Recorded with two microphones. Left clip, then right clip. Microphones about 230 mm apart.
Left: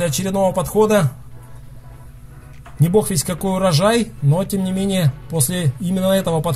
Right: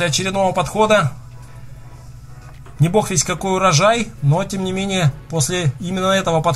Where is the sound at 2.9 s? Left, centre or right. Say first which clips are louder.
Even; left.